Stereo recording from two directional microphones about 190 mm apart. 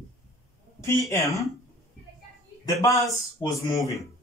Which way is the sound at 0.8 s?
15° left (ahead or behind).